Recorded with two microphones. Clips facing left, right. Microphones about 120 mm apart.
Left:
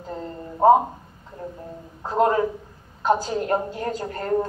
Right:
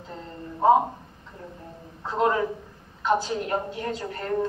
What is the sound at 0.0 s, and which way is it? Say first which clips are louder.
Speech: left 5 dB; 40° left (ahead or behind).